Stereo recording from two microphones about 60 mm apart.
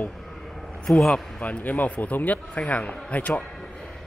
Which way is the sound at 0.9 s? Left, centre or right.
Centre.